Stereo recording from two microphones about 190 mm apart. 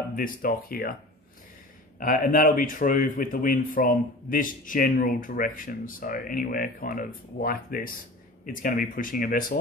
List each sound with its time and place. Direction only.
0.1 s speech: 45° left (ahead or behind)
2.0 s speech: 45° left (ahead or behind)